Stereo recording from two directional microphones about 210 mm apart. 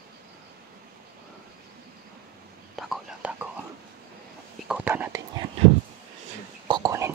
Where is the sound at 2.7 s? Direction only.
5° right (ahead or behind).